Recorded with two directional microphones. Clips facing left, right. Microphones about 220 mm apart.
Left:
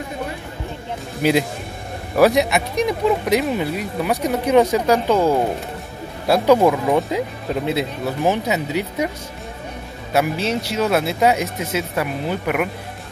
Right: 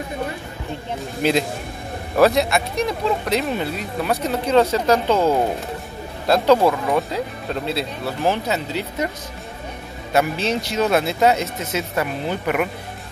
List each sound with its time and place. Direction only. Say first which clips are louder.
1.2 s speech: left 2 dB; 10° left (ahead or behind)
10.1 s speech: even; 5° left (ahead or behind)